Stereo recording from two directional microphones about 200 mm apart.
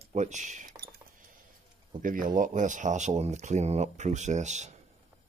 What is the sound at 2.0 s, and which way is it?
Speech, 40° right (ahead or behind).